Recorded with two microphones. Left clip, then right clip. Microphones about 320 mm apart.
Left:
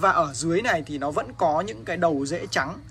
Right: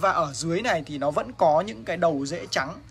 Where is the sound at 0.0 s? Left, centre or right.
Centre.